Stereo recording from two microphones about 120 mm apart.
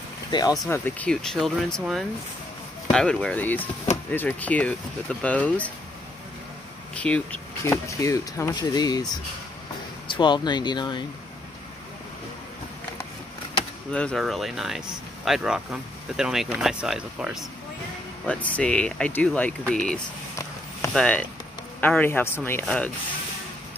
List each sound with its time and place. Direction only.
0.3 s speech: 35° left (ahead or behind)
0.7 s speech: 15° left (ahead or behind)
7.0 s speech: 10° left (ahead or behind)
7.6 s speech: 25° left (ahead or behind)
10.1 s speech: 40° left (ahead or behind)
13.9 s speech: 10° left (ahead or behind)
14.2 s speech: centre (ahead or behind)
18.2 s speech: 10° left (ahead or behind)